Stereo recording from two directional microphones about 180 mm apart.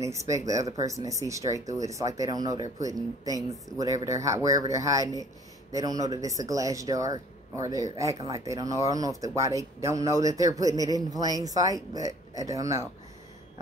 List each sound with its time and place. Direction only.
0.0 s speech: 15° right (ahead or behind)